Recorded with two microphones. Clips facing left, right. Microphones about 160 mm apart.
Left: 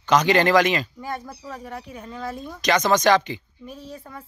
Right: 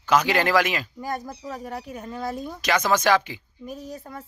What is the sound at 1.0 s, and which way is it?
Speech, 40° right (ahead or behind).